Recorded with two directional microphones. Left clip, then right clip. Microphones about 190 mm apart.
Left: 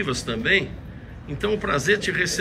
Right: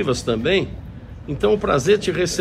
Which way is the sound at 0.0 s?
10° right (ahead or behind).